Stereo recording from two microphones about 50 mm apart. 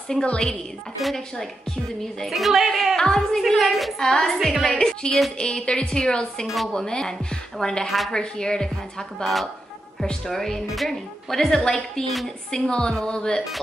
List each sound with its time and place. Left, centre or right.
0.2 s a woman's voice: left
1.0 s a woman's voice: centre
4.7 s a woman's voice: centre
6.4 s a woman's voice: centre
6.7 s a woman's voice: centre
7.8 s a woman's voice: centre
8.1 s a woman's voice: centre
9.2 s a woman's voice: centre